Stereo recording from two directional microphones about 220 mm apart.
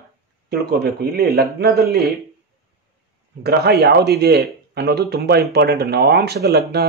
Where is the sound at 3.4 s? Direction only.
45° right (ahead or behind).